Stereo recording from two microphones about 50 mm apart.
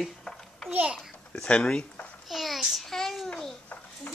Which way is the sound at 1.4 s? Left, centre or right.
Centre.